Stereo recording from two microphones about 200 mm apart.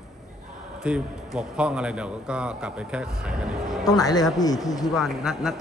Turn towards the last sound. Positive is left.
turn(degrees=-5)  # may be behind; listen again after turning